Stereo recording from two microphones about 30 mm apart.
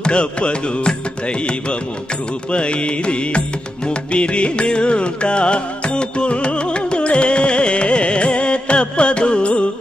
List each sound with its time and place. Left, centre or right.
0.0 s music: left
2.5 s music: left